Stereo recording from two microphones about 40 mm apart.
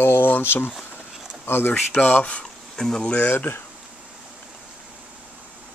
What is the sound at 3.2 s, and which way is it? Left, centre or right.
Speech, left.